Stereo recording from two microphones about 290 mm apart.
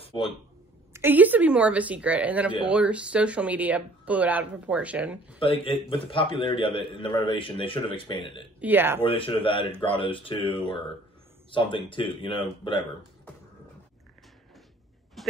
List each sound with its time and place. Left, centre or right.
0.0 s a sound: centre
0.9 s speech: centre
5.4 s a man's voice: centre
8.5 s speech: centre
9.1 s a man's voice: centre
15.2 s a sound: centre